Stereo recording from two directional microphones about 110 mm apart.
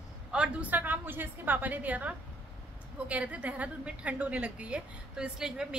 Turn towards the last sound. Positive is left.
turn(degrees=-5)  # may be behind; listen again after turning